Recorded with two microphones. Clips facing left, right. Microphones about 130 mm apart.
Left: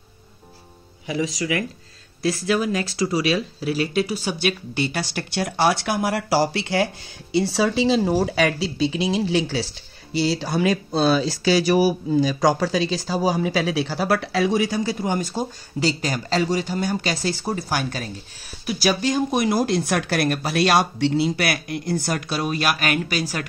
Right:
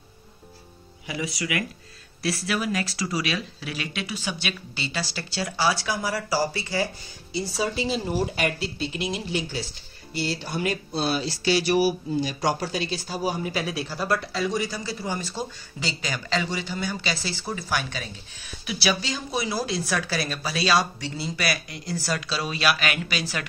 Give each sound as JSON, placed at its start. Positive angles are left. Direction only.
{"t": 1.0, "sound": "speech", "side_deg": 30}
{"t": 12.4, "sound": "speech", "side_deg": 90}